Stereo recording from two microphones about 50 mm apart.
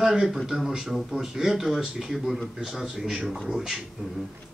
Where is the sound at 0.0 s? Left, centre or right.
Centre.